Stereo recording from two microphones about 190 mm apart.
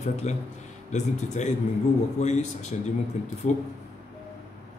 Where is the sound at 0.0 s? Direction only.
35° left (ahead or behind).